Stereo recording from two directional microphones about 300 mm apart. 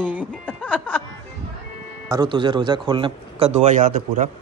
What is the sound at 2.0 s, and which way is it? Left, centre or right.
A man's voice, centre.